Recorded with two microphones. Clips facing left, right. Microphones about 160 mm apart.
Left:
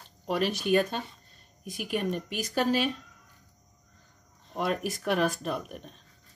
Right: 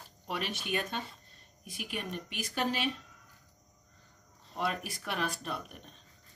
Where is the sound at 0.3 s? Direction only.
40° left (ahead or behind).